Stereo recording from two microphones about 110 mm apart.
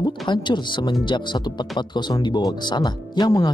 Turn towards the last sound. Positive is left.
turn(degrees=40)  # may be behind; listen again after turning